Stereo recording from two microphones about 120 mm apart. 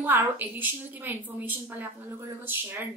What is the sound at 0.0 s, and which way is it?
A woman's voice, 15° right (ahead or behind).